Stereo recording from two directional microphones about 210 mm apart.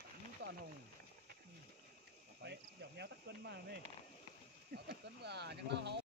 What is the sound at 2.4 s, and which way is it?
Cricket, 55° right (ahead or behind).